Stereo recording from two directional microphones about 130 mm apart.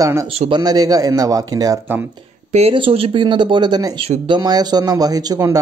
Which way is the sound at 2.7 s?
45° right (ahead or behind).